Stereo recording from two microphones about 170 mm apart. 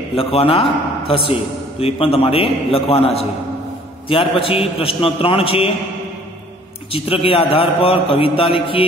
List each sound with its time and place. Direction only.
0.1 s a man's voice: 35° left (ahead or behind)
6.9 s a man's voice: 35° left (ahead or behind)